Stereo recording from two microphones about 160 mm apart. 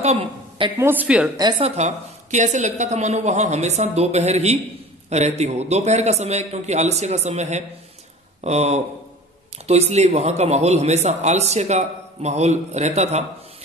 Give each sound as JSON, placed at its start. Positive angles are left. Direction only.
{"t": 0.0, "sound": "a woman's voice", "side_deg": -40}
{"t": 0.7, "sound": "speech", "side_deg": -10}
{"t": 1.6, "sound": "a man's voice", "side_deg": -45}